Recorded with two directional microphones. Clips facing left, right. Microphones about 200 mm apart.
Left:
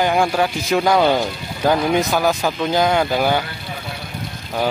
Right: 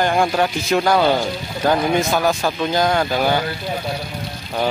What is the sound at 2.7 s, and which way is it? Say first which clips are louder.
Speech: left 2 dB; 10° left (ahead or behind).